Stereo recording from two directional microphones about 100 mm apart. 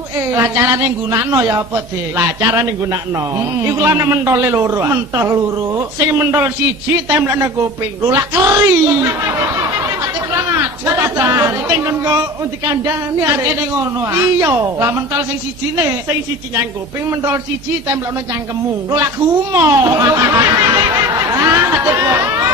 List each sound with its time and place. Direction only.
0.3 s a woman's voice: 30° right (ahead or behind)
10.3 s a woman's voice: 30° right (ahead or behind)
18.9 s speech: 30° right (ahead or behind)